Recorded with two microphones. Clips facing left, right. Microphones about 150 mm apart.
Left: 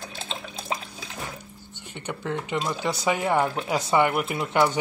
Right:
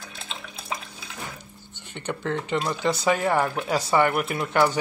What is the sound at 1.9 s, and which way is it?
Speech, 10° left (ahead or behind).